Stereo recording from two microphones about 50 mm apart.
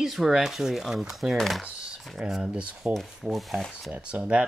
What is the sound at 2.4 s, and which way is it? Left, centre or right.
Speech, centre.